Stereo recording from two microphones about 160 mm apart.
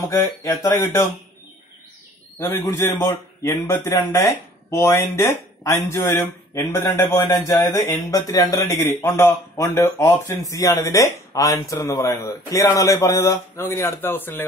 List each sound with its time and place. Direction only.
0.1 s a man's voice: 15° left (ahead or behind)
2.3 s a man's voice: 15° left (ahead or behind)